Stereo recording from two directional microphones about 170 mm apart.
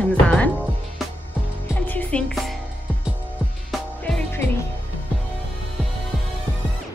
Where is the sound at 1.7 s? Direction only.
10° left (ahead or behind).